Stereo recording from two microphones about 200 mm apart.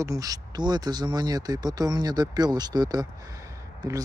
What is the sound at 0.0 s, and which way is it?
Speech, 15° right (ahead or behind).